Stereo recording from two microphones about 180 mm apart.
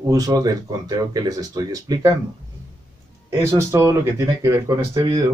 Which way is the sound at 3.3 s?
15° right (ahead or behind).